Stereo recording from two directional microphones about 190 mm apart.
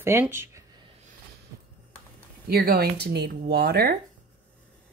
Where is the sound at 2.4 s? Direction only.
55° right (ahead or behind).